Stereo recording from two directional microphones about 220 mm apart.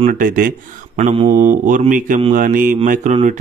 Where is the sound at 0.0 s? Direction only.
35° right (ahead or behind).